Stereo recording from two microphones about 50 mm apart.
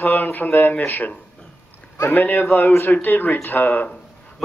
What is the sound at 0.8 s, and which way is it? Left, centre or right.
Speech, left.